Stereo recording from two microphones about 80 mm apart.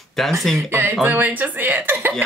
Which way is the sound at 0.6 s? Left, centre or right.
Right.